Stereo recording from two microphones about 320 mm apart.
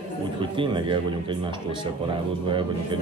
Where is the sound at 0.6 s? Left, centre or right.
Centre.